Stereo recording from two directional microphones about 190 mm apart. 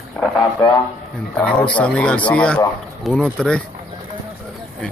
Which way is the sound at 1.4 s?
10° left (ahead or behind).